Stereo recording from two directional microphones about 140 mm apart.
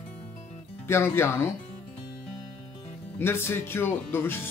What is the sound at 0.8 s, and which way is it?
Speech, 20° left (ahead or behind).